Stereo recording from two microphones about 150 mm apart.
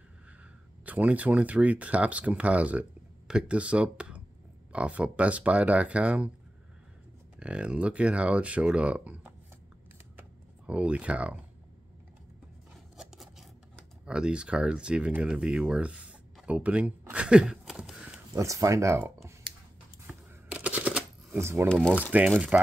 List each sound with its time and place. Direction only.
0.8 s speech: 10° right (ahead or behind)
7.3 s speech: 5° right (ahead or behind)
10.7 s speech: 10° right (ahead or behind)
12.9 s scissors: 5° right (ahead or behind)
18.3 s speech: 20° right (ahead or behind)
20.1 s shuffling cards: 10° right (ahead or behind)
21.4 s speech: 15° right (ahead or behind)